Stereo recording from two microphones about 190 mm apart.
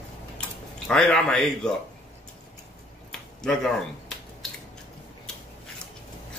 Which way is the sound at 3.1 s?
5° left (ahead or behind).